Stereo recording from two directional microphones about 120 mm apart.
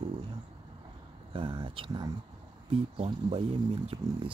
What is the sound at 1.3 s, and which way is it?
Speech, 45° right (ahead or behind).